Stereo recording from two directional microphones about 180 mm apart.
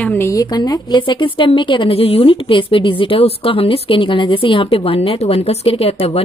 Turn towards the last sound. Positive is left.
turn(degrees=35)  # may be behind; listen again after turning